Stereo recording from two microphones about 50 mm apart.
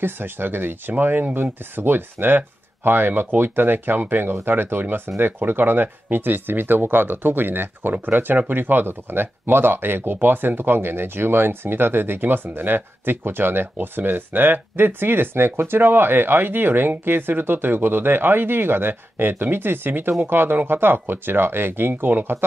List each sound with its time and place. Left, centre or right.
0.0 s speech: right